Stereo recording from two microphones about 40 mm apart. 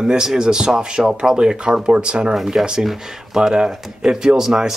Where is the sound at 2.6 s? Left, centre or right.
Centre.